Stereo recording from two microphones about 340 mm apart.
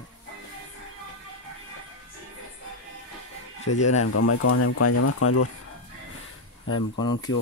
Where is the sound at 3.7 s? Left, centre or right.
Left.